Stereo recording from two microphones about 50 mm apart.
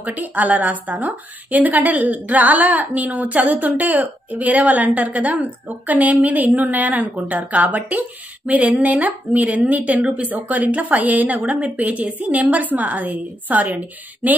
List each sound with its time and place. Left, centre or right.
0.0 s a woman's voice: right